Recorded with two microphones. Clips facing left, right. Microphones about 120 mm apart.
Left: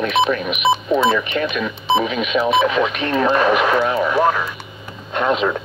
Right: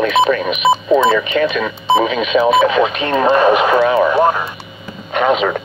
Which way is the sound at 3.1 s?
45° right (ahead or behind).